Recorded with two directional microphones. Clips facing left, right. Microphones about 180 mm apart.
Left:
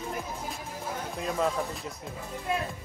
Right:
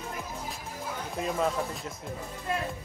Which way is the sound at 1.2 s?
Centre (ahead or behind).